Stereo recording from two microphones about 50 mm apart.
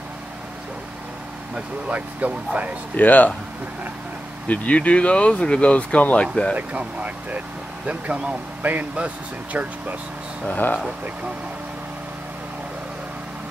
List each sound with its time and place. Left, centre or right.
1.9 s speech: right
3.0 s speech: left
4.5 s speech: left
6.5 s speech: right
10.5 s speech: left